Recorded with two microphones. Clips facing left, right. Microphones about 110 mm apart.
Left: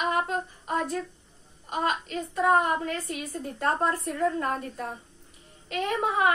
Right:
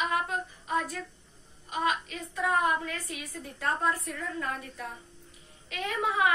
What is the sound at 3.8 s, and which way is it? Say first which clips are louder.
A woman's voice: left 5 dB; 30° left (ahead or behind).